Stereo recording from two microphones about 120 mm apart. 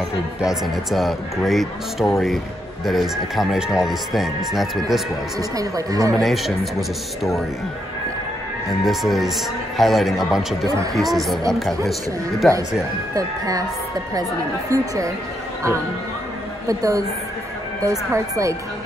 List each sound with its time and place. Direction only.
0.4 s speech: centre (ahead or behind)
5.4 s speech: 30° right (ahead or behind)
6.1 s speech: centre (ahead or behind)
8.8 s speech: centre (ahead or behind)
13.1 s speech: 30° right (ahead or behind)
14.7 s speech: 25° right (ahead or behind)
16.6 s speech: 25° right (ahead or behind)